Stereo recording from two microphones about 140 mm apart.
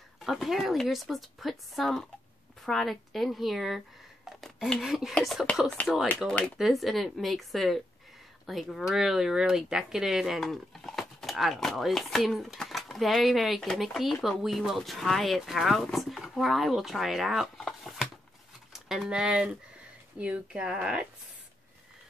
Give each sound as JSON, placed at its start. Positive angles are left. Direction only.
{"t": 0.2, "sound": "speech", "side_deg": 0}